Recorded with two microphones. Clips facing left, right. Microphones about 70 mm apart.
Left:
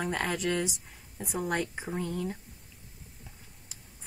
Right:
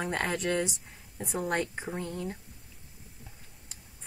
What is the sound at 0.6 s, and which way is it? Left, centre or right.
Speech, centre.